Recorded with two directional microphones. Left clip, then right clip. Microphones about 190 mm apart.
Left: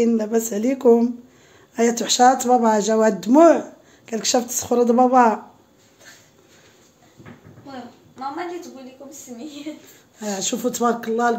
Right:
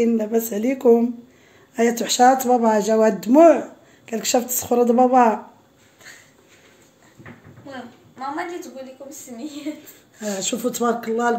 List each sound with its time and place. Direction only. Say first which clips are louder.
0.0 s speech: even; centre (ahead or behind)
9.7 s speech: right 4 dB; 30° right (ahead or behind)
10.2 s speech: even; 5° left (ahead or behind)